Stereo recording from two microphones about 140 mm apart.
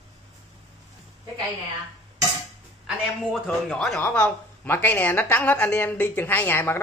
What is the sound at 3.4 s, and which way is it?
A man's voice, 5° left (ahead or behind).